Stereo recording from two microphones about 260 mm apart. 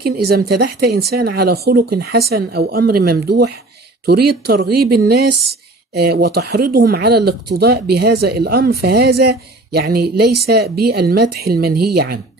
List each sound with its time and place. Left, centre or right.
0.0 s speech: right